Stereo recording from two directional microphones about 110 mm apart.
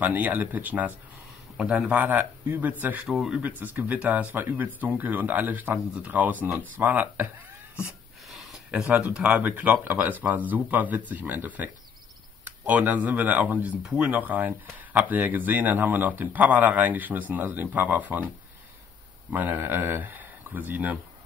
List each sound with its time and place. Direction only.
0.0 s speech: 15° right (ahead or behind)
3.1 s speech: 5° right (ahead or behind)
8.3 s a sound: centre (ahead or behind)
9.1 s speech: 10° right (ahead or behind)
19.3 s speech: 20° right (ahead or behind)